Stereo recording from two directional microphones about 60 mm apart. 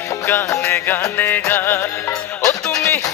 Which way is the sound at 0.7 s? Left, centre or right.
Left.